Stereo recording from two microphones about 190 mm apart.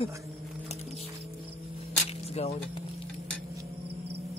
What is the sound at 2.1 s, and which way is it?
Music, 35° left (ahead or behind).